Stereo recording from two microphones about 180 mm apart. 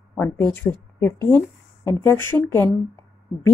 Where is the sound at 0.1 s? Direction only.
10° left (ahead or behind).